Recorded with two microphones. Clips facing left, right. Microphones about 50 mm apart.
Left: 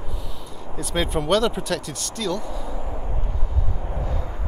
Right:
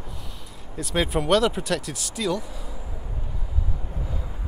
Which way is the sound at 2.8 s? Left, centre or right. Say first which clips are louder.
Left 7 dB; left.